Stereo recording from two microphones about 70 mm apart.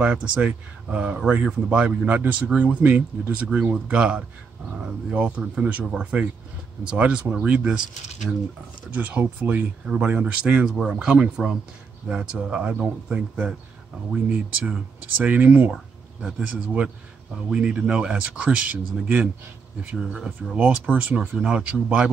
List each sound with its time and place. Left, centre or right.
0.0 s speech: centre
8.9 s speech: centre
20.0 s speech: centre